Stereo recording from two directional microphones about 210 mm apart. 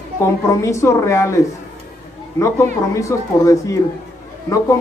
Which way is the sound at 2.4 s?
15° left (ahead or behind).